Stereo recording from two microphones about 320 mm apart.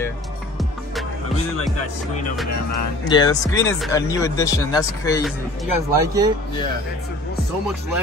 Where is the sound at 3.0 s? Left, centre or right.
Centre.